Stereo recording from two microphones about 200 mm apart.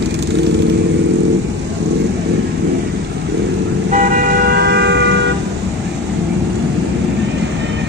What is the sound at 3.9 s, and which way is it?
Vehicle, 50° right (ahead or behind).